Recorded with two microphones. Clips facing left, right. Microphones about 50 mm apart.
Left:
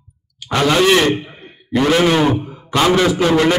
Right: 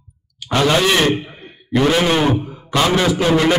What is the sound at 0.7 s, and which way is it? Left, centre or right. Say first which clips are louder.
A man's voice: left 3 dB; centre.